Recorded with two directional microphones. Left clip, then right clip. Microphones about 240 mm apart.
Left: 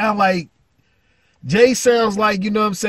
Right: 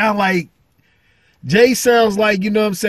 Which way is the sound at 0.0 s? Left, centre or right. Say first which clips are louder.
Right 1 dB; centre.